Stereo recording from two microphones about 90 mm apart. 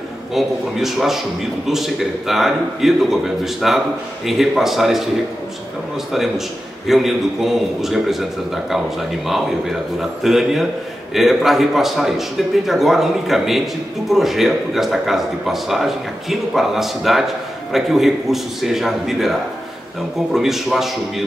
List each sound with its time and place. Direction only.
0.3 s a man's voice: 5° right (ahead or behind)
6.1 s a man's voice: 5° right (ahead or behind)
20.3 s a man's voice: 5° right (ahead or behind)